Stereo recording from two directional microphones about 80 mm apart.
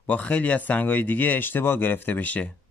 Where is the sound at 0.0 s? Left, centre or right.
Centre.